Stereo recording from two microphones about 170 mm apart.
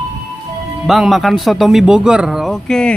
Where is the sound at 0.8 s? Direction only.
Centre (ahead or behind).